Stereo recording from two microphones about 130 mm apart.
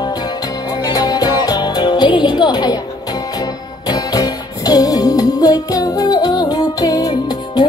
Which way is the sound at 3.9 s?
30° left (ahead or behind).